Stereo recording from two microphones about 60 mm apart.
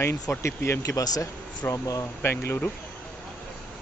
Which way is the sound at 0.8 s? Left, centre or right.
Left.